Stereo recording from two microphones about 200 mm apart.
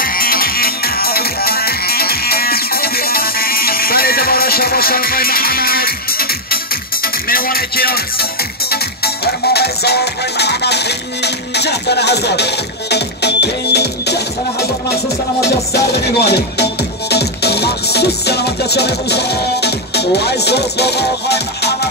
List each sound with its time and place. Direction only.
0.0 s music: 45° left (ahead or behind)